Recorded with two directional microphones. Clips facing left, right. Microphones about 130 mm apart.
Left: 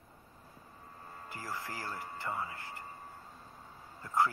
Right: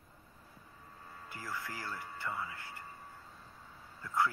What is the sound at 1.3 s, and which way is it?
Speech, 35° left (ahead or behind).